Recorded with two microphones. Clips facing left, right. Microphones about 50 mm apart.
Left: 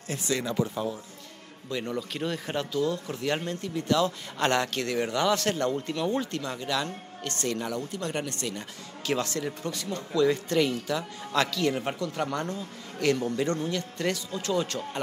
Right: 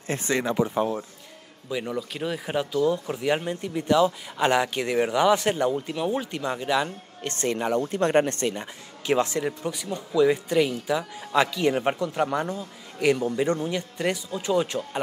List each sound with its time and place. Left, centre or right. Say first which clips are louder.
0.1 s speech: right 4 dB; right
0.7 s speech: right 6 dB; right
1.7 s speech: right 2 dB; centre; by 7.8 s right
7.8 s speech: right 10 dB; right
8.5 s speech: right 3 dB; right